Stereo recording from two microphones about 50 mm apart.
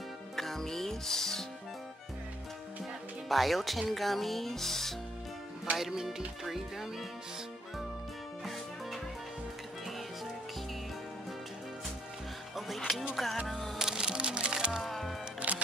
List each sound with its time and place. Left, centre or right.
0.4 s music: centre
3.3 s music: centre
5.8 s speech: centre
12.5 s music: centre
13.1 s speech: centre
13.7 s music: centre
14.7 s music: centre
15.4 s music: right